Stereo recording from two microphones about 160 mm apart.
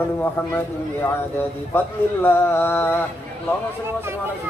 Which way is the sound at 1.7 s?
15° left (ahead or behind).